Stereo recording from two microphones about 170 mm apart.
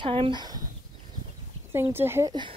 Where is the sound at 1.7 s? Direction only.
15° right (ahead or behind).